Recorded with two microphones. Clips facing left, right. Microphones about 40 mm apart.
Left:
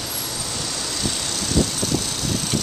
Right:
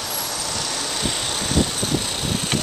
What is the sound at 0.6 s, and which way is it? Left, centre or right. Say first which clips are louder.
Vehicle: even; right.